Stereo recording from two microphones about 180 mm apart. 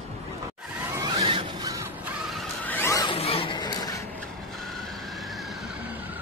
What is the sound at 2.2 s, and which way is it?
Zipper, 5° left (ahead or behind).